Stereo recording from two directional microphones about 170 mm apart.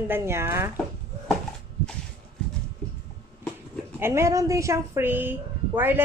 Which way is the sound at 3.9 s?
15° right (ahead or behind).